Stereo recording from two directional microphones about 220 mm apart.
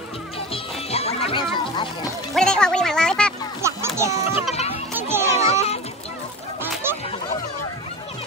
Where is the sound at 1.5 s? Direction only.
20° left (ahead or behind).